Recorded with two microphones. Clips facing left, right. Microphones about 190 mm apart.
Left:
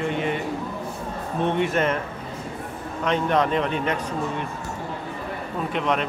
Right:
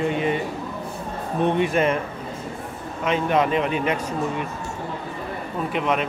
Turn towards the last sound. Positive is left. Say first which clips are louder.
# right 1 dB
turn(degrees=-5)  # may be behind; listen again after turning